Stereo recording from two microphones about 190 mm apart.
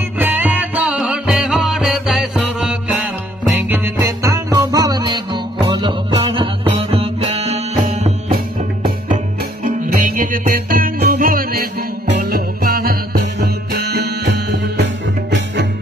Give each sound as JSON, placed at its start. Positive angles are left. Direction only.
{"t": 0.2, "sound": "music", "side_deg": -10}
{"t": 8.3, "sound": "music", "side_deg": -50}